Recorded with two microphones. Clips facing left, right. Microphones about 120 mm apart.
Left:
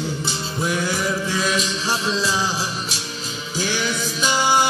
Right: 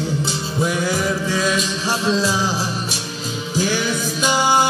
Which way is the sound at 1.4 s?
Centre (ahead or behind).